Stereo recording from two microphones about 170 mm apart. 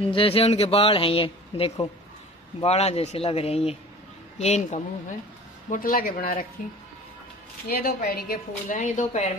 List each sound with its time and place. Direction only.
0.1 s speech: 35° left (ahead or behind)
5.7 s a woman's voice: 55° left (ahead or behind)
7.6 s a woman's voice: 65° left (ahead or behind); by 9.3 s 45° left (ahead or behind)